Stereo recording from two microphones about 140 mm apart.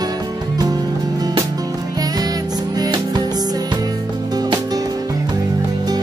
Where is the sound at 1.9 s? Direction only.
25° right (ahead or behind).